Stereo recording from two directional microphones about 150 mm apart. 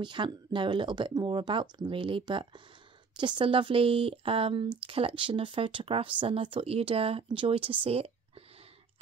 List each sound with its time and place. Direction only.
0.0 s speech: 30° right (ahead or behind)